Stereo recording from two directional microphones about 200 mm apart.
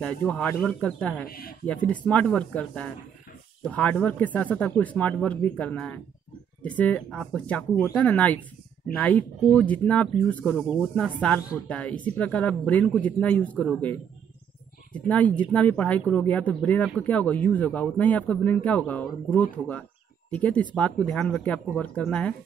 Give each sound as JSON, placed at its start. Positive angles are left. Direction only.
{"t": 0.0, "sound": "speech", "side_deg": 5}
{"t": 1.2, "sound": "speech", "side_deg": 50}
{"t": 1.9, "sound": "speech", "side_deg": 5}